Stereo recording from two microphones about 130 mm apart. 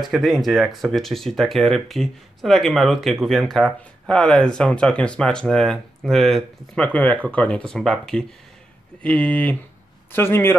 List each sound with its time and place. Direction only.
0.0 s speech: centre (ahead or behind); by 10.5 s 15° left (ahead or behind)